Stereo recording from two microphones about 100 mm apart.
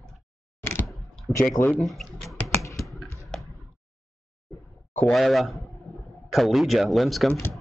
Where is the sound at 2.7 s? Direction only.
Centre (ahead or behind).